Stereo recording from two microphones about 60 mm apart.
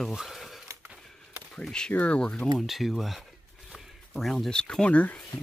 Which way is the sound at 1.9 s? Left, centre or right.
Left.